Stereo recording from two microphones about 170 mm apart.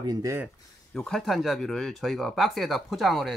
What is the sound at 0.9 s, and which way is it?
Speech, 5° left (ahead or behind).